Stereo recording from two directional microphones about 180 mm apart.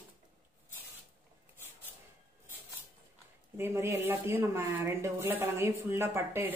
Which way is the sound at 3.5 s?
15° right (ahead or behind).